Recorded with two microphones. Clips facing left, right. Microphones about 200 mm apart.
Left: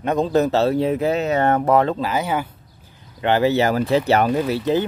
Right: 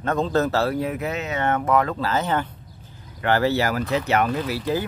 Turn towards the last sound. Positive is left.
turn(degrees=25)  # may be behind; listen again after turning